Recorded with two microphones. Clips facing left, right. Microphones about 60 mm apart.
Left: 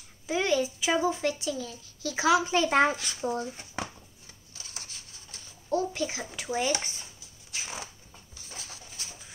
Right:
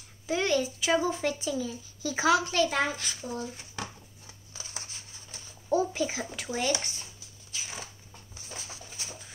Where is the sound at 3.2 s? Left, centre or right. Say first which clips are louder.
Left 5 dB; left.